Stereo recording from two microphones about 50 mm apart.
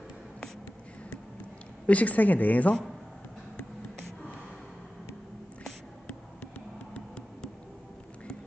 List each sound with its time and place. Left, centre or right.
1.9 s a woman's voice: left
6.9 s vehicle: centre